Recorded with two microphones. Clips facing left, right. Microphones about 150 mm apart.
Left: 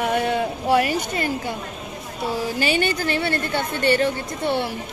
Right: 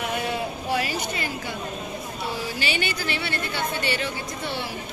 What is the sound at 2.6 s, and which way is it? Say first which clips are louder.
A woman's voice: left 7 dB; 45° left (ahead or behind).